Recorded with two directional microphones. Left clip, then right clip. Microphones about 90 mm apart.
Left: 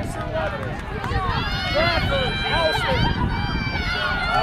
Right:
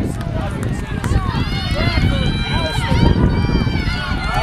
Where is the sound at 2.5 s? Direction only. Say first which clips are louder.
Left 3 dB; 20° left (ahead or behind).